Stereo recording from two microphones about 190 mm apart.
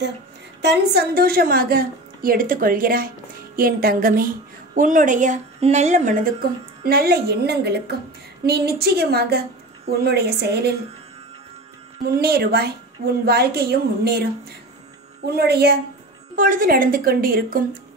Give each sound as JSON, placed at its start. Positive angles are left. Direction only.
{"t": 0.6, "sound": "a woman's voice", "side_deg": -60}
{"t": 6.8, "sound": "a woman's voice", "side_deg": -55}
{"t": 12.2, "sound": "a woman's voice", "side_deg": -55}
{"t": 15.2, "sound": "a woman's voice", "side_deg": -55}
{"t": 16.3, "sound": "a woman's voice", "side_deg": -45}